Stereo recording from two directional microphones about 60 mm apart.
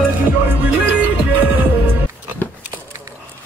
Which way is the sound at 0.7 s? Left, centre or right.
Right.